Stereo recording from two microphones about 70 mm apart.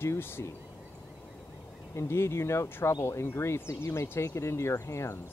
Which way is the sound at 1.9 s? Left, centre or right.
Left.